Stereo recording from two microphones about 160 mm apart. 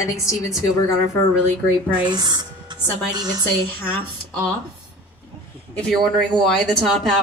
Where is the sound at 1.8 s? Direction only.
25° right (ahead or behind).